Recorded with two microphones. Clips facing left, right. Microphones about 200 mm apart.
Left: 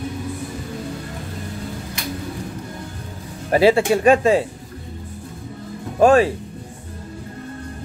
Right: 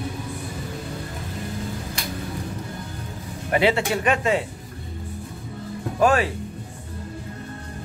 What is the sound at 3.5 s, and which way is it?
Speech, 30° left (ahead or behind).